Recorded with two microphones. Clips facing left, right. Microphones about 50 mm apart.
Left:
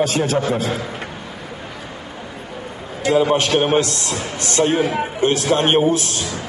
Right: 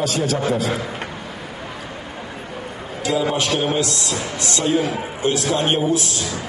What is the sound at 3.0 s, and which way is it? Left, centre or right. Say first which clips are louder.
A man's voice: left 4 dB; left.